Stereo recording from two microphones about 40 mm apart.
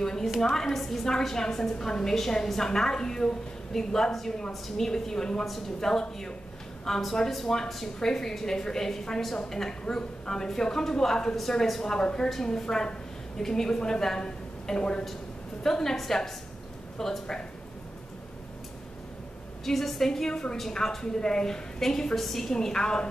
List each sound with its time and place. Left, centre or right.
0.0 s a woman's voice: centre
19.6 s a woman's voice: centre
20.1 s a woman's voice: centre
22.5 s a woman's voice: centre